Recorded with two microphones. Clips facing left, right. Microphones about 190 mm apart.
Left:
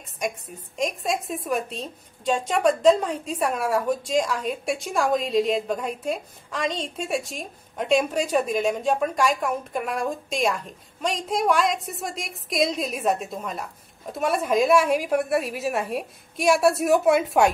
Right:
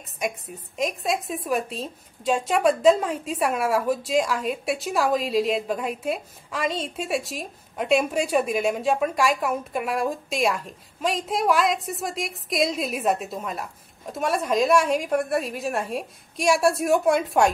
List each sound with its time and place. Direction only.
0.7 s a woman's voice: centre (ahead or behind)